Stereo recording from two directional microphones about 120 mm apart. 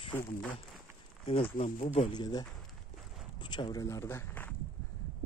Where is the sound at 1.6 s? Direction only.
80° left.